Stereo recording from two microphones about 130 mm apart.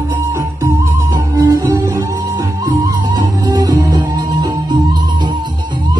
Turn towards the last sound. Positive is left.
turn(degrees=-35)  # may be behind; listen again after turning